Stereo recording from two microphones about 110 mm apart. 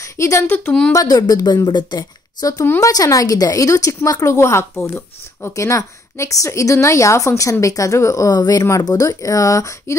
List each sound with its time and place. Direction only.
0.0 s speech: 25° left (ahead or behind)
0.7 s speech: 10° left (ahead or behind)
0.9 s speech: 35° left (ahead or behind)